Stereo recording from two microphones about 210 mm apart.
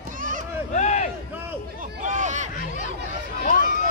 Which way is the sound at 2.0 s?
35° right (ahead or behind).